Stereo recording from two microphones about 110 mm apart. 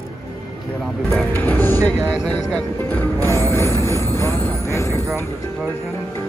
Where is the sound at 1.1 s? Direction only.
20° left (ahead or behind).